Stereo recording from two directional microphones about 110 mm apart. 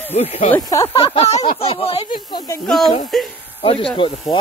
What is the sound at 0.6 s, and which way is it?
Speech, 30° left (ahead or behind).